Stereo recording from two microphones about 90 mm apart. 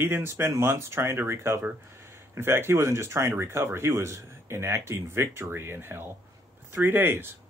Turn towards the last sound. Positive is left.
turn(degrees=-25)  # may be behind; listen again after turning